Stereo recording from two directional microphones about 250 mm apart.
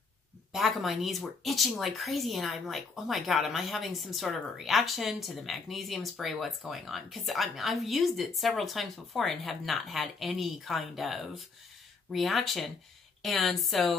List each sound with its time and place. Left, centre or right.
0.5 s speech: centre